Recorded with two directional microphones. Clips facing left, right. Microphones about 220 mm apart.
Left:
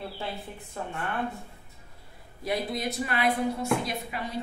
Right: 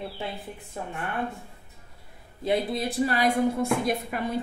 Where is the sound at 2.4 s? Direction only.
25° right (ahead or behind).